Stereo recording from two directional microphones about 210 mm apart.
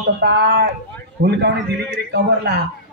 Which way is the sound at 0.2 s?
50° right (ahead or behind).